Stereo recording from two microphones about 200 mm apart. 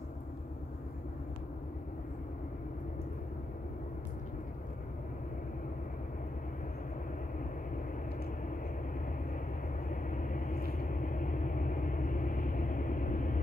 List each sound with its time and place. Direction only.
9.8 s vehicle: 40° left (ahead or behind)